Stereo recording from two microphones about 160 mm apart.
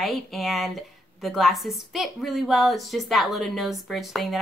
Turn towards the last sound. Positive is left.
turn(degrees=0)  # may be behind; listen again after turning